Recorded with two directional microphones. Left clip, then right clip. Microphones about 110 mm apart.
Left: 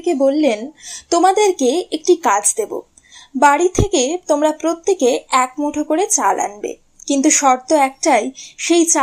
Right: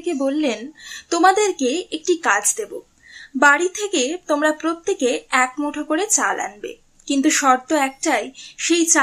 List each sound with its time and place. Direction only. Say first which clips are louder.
0.0 s a woman's voice: left 6 dB; 25° left (ahead or behind)
5.6 s a woman's voice: left 4 dB; 15° left (ahead or behind)